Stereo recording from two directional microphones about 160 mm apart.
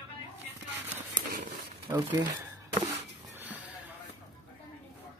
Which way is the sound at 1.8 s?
25° right (ahead or behind).